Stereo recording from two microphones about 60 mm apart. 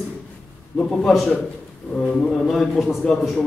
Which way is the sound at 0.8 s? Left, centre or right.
Centre.